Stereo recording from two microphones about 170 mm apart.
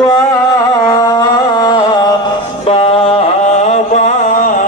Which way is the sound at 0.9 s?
25° left (ahead or behind).